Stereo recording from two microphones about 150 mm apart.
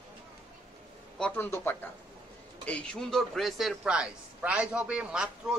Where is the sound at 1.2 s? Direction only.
5° left (ahead or behind).